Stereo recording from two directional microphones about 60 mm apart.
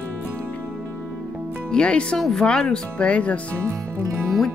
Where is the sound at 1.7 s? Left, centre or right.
Centre.